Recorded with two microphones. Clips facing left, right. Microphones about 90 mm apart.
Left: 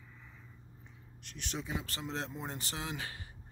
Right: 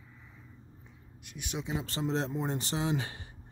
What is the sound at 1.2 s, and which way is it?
Speech, 10° right (ahead or behind).